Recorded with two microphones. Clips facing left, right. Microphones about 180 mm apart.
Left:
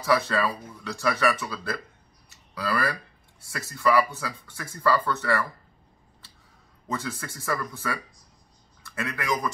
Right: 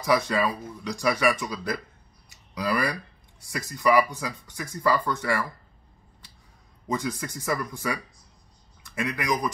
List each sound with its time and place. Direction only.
0.0 s speech: 15° right (ahead or behind)
6.9 s a man's voice: 15° right (ahead or behind)